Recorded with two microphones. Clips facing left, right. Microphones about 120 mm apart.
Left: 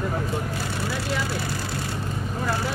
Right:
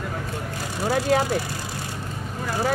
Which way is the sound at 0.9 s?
45° right (ahead or behind).